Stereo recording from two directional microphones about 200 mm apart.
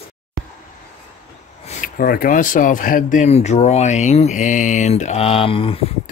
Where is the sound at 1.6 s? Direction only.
40° left (ahead or behind).